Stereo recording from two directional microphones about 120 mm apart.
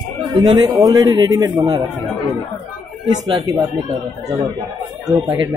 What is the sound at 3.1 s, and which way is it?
Speech, 35° right (ahead or behind).